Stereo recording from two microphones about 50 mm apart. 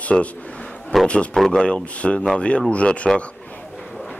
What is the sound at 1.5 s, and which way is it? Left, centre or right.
Speech, left.